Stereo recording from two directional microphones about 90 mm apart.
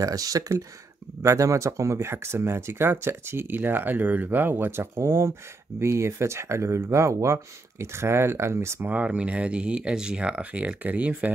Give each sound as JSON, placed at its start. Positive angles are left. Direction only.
{"t": 0.0, "sound": "speech", "side_deg": -40}
{"t": 8.8, "sound": "speech", "side_deg": -15}